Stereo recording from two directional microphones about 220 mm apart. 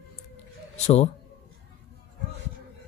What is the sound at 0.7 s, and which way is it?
Speech, 30° left (ahead or behind).